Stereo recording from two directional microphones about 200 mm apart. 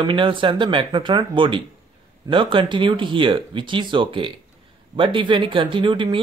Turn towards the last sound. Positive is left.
turn(degrees=-25)  # may be behind; listen again after turning